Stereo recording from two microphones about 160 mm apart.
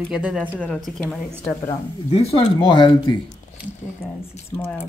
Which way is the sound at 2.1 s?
40° left (ahead or behind).